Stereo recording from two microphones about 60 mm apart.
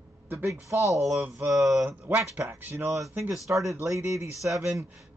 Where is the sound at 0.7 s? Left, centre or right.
Right.